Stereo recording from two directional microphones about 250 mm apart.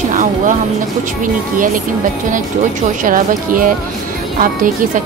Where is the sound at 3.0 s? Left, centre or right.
Right.